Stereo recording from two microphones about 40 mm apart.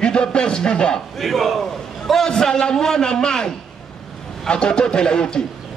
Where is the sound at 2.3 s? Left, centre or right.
Centre.